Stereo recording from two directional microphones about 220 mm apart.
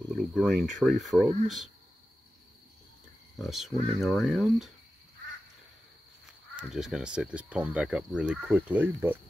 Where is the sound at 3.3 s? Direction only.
Centre (ahead or behind).